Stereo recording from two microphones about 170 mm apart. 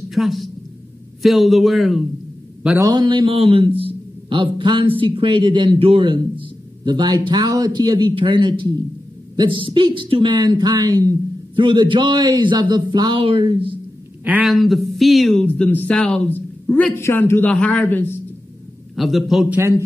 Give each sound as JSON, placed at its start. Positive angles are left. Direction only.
{"t": 0.1, "sound": "a woman's voice", "side_deg": 0}
{"t": 2.8, "sound": "a man's voice", "side_deg": -25}
{"t": 14.2, "sound": "a man's voice", "side_deg": -5}
{"t": 18.9, "sound": "speech", "side_deg": 0}